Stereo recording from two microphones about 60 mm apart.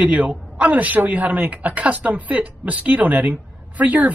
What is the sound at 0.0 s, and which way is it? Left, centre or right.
A man's voice, right.